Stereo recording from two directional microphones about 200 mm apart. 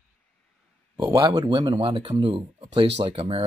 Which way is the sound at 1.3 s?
25° right (ahead or behind).